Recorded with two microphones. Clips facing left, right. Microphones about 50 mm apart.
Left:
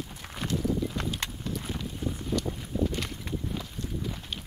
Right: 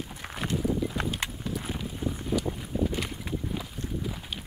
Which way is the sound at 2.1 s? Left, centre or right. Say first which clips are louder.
Right 2 dB; centre.